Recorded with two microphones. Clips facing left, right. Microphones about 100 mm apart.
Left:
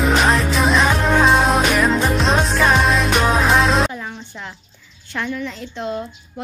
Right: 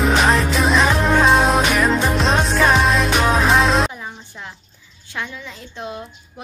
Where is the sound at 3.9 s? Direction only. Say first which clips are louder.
Left 3 dB; 15° right (ahead or behind).